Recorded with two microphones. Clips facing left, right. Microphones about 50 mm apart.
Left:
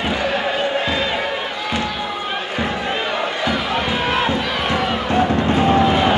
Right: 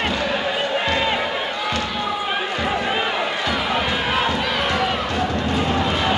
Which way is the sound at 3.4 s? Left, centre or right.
Centre.